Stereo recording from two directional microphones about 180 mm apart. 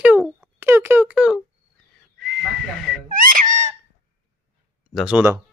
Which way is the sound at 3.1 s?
50° right (ahead or behind).